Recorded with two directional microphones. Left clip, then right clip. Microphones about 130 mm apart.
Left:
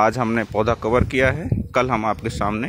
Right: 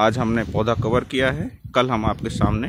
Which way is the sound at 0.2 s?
25° right (ahead or behind).